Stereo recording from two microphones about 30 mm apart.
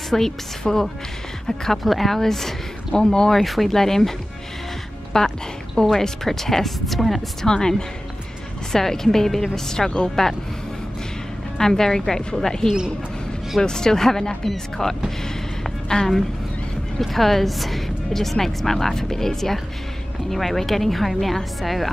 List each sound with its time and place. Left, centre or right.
0.1 s speech: centre
1.8 s speech: centre
2.9 s speech: left
3.3 s a woman's voice: centre
5.1 s speech: left; by 7.2 s centre
7.4 s speech: left
8.7 s speech: centre
11.5 s speech: centre
12.2 s speech: left
13.6 s speech: left
15.0 s a sound: centre
16.0 s a woman's voice: left
17.0 s a woman's voice: centre